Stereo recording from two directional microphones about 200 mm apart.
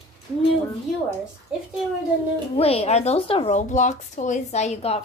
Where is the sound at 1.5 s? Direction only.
5° right (ahead or behind).